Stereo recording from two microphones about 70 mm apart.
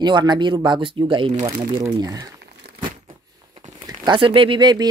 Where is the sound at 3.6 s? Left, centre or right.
Right.